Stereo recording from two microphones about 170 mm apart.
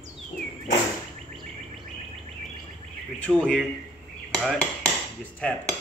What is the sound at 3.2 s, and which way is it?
Speech, 5° left (ahead or behind).